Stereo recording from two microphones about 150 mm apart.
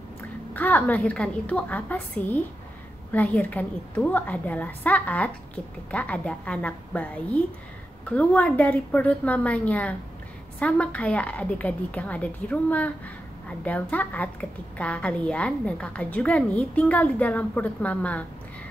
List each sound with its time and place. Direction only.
0.6 s a woman's voice: 10° left (ahead or behind)